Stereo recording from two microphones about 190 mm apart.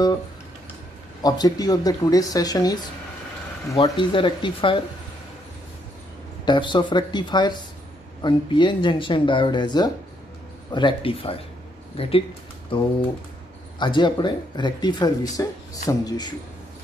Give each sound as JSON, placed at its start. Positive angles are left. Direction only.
{"t": 1.2, "sound": "speech", "side_deg": 20}
{"t": 6.4, "sound": "speech", "side_deg": 25}